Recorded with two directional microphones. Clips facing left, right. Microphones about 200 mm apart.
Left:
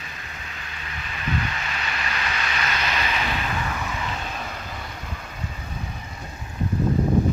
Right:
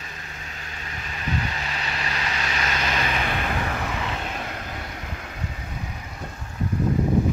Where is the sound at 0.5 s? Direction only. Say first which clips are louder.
Right 1 dB; 40° right (ahead or behind); by 3.6 s 55° right (ahead or behind).